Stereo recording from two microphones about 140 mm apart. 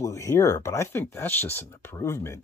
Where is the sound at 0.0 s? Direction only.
20° left (ahead or behind).